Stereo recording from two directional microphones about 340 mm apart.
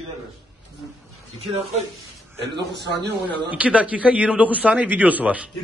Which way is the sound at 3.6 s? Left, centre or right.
Centre.